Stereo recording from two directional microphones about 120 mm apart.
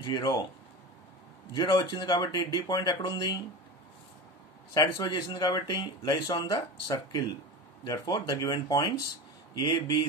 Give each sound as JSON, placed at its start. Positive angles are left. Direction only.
{"t": 0.0, "sound": "speech", "side_deg": 35}
{"t": 1.5, "sound": "speech", "side_deg": 35}
{"t": 4.7, "sound": "speech", "side_deg": 35}